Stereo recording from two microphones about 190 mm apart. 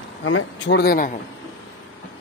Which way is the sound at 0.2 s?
80° left.